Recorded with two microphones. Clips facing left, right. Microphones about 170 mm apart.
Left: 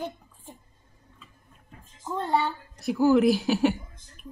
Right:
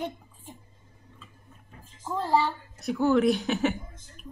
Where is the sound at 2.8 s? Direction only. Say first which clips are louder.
Left 3 dB; centre (ahead or behind).